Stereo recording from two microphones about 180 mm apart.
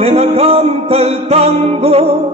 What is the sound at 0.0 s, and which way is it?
Music, 35° right (ahead or behind).